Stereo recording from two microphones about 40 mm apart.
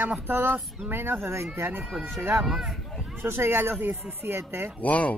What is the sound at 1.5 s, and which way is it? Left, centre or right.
Speech, right.